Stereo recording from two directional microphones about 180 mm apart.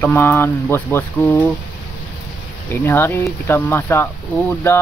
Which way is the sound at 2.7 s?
15° left (ahead or behind).